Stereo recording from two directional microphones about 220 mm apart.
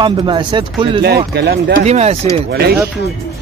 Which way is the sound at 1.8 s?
30° right (ahead or behind).